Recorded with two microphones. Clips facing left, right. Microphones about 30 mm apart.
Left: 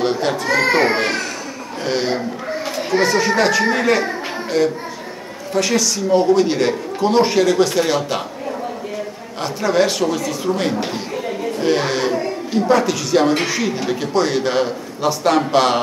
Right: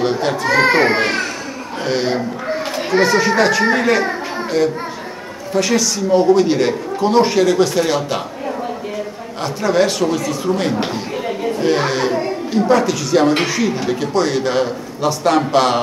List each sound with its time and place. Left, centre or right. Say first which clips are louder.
0.0 s a man's voice: right 1 dB; centre
5.5 s a man's voice: right 1 dB; centre
9.4 s a man's voice: right 1 dB; centre
10.8 s chatter: right 2 dB; right
11.6 s a man's voice: right 1 dB; centre